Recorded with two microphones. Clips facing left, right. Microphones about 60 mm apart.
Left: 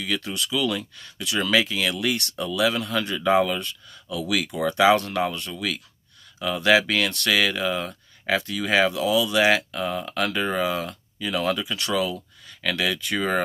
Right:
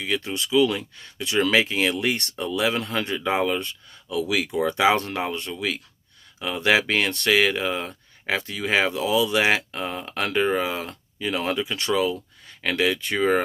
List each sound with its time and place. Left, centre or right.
0.0 s speech: right
10.9 s speech: right